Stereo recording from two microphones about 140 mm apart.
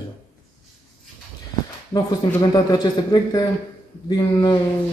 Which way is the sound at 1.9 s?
30° left (ahead or behind).